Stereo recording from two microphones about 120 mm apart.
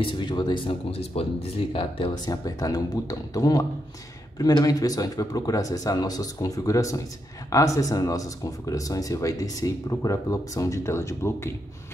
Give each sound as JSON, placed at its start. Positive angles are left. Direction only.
{"t": 0.0, "sound": "speech", "side_deg": 40}
{"t": 1.1, "sound": "speech", "side_deg": 55}
{"t": 1.7, "sound": "speech", "side_deg": 45}
{"t": 2.4, "sound": "speech", "side_deg": 30}